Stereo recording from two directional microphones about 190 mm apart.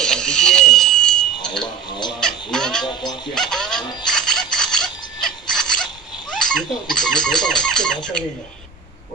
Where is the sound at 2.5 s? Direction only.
5° left (ahead or behind).